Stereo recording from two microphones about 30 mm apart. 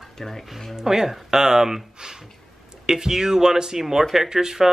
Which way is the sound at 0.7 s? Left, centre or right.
Centre.